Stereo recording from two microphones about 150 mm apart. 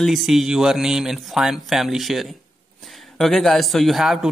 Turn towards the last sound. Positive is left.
turn(degrees=0)  # may be behind; listen again after turning